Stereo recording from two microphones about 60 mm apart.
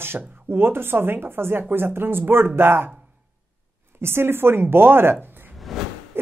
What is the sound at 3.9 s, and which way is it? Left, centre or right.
A woman's voice, right.